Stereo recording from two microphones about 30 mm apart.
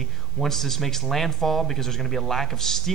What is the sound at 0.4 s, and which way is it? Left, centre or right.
Speech, centre.